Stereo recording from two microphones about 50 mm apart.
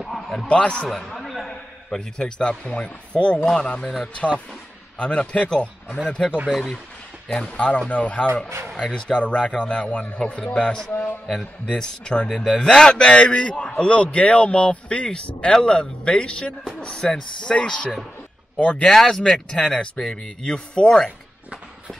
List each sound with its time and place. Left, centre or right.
0.0 s a sound: centre
0.5 s a man's voice: left
0.8 s a sound: centre
1.9 s a man's voice: centre
4.9 s a man's voice: left
6.5 s speech: centre
7.2 s a man's voice: centre
10.9 s a sound: left
11.2 s speech: centre
11.7 s a man's voice: centre
18.9 s a man's voice: centre